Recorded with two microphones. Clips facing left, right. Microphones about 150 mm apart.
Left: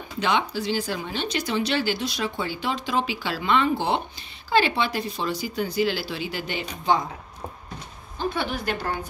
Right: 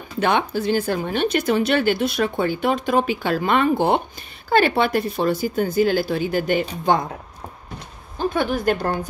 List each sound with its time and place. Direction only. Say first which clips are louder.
0.2 s speech: right 4 dB; 55° right (ahead or behind)
8.3 s speech: right 7 dB; 45° right (ahead or behind)